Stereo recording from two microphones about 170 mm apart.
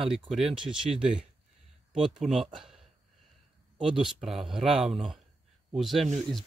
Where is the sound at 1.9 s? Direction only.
Centre (ahead or behind).